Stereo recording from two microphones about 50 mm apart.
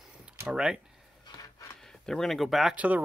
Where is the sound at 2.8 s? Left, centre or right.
Right.